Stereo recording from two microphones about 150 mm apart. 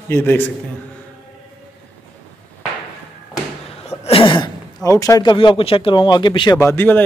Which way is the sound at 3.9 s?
40° left (ahead or behind).